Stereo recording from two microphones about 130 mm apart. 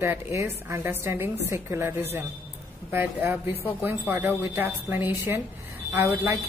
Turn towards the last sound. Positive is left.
turn(degrees=-20)  # may be behind; listen again after turning